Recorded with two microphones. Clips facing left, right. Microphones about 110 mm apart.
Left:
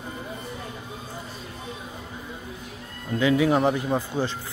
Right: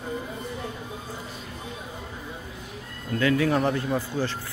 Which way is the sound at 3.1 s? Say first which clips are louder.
Left 2 dB; 15° left (ahead or behind).